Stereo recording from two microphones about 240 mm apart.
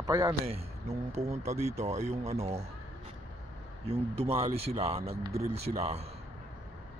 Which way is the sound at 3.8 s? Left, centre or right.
Right.